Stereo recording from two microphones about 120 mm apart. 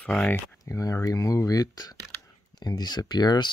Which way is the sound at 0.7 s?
30° left (ahead or behind).